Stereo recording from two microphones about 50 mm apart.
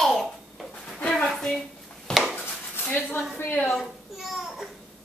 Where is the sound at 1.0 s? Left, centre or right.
Left.